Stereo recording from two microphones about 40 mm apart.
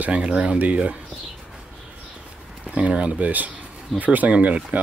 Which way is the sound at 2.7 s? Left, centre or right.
Right.